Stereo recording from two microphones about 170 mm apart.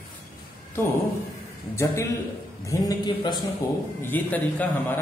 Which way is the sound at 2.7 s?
20° left (ahead or behind).